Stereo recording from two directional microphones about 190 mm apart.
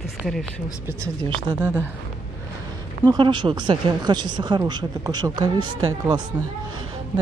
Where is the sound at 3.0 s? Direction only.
25° right (ahead or behind).